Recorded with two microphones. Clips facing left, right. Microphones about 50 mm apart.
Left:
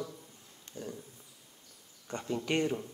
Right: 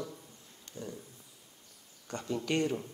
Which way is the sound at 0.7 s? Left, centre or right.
Right.